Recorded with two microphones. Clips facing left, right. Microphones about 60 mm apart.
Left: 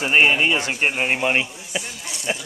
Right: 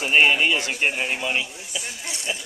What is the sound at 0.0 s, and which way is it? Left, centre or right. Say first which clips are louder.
A man's voice: left 1 dB; left.